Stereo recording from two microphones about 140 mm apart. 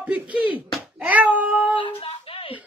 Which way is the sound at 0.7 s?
5° right (ahead or behind).